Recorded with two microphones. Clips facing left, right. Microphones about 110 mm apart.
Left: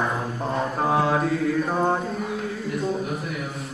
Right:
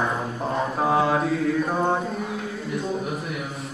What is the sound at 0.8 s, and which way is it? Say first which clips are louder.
Mantra: right 1 dB; centre (ahead or behind).